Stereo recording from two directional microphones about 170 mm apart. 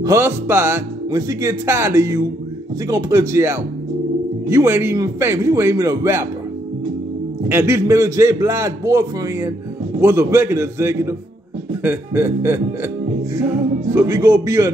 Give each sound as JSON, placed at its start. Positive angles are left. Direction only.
{"t": 0.0, "sound": "speech", "side_deg": -15}
{"t": 7.4, "sound": "speech", "side_deg": -15}